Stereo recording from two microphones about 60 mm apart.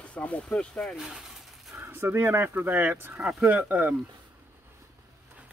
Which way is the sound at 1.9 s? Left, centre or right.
Right.